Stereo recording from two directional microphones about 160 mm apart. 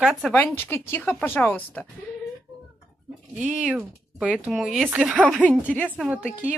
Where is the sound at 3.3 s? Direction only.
5° right (ahead or behind); by 5.7 s 10° left (ahead or behind).